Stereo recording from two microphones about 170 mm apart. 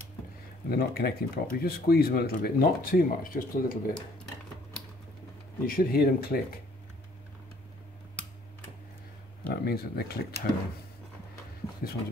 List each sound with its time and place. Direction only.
0.7 s speech: 65° left (ahead or behind)
5.7 s speech: 60° left (ahead or behind)
9.5 s speech: 70° left (ahead or behind)
11.6 s a sound: 15° left (ahead or behind)